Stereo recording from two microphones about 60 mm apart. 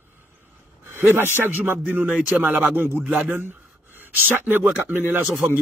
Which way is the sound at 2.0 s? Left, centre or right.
Centre.